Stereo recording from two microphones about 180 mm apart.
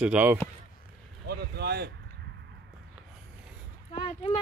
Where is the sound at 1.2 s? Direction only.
65° right (ahead or behind).